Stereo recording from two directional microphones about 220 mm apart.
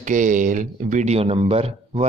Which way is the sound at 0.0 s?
35° right (ahead or behind).